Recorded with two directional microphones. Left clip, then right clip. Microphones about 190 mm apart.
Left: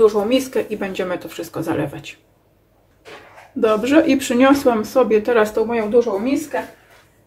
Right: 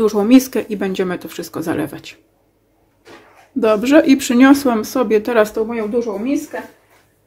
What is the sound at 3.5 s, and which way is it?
Speech, 40° right (ahead or behind).